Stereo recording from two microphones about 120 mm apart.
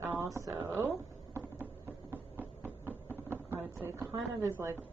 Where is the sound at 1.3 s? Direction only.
20° right (ahead or behind).